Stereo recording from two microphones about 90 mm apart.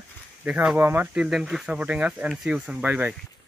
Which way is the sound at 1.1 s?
5° right (ahead or behind).